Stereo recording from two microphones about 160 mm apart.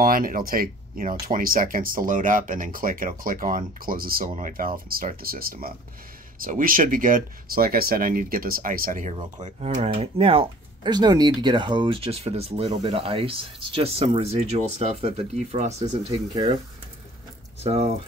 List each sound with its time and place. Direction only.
0.0 s speech: 60° right (ahead or behind)
9.1 s speech: 40° right (ahead or behind)
17.6 s speech: 40° right (ahead or behind)